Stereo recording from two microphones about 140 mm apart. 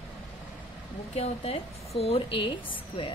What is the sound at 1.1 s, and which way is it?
A woman's voice, 45° left (ahead or behind).